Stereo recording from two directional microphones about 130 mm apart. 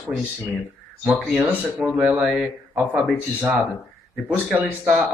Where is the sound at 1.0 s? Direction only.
10° right (ahead or behind).